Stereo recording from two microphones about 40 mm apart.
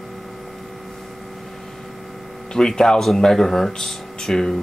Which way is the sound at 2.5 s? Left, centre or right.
Centre.